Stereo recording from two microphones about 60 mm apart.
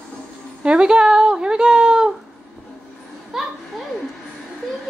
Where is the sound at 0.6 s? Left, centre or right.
Centre.